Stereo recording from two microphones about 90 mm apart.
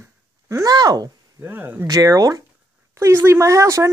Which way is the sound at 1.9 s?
40° right (ahead or behind).